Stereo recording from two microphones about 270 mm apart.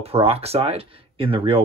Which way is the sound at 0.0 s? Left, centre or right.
Right.